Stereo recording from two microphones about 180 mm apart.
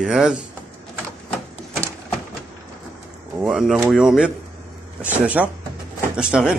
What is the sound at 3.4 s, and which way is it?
Speech, centre (ahead or behind).